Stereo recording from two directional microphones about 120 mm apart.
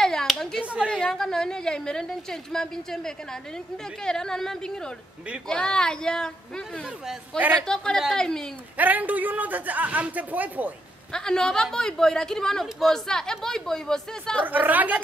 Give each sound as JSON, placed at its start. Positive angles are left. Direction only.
{"t": 0.0, "sound": "a sound", "side_deg": 5}
{"t": 0.8, "sound": "speech", "side_deg": 5}
{"t": 7.1, "sound": "a man's voice", "side_deg": -15}
{"t": 7.6, "sound": "speech", "side_deg": 5}
{"t": 8.7, "sound": "a man's voice", "side_deg": -15}
{"t": 11.1, "sound": "speech", "side_deg": 5}
{"t": 14.4, "sound": "a man's voice", "side_deg": -15}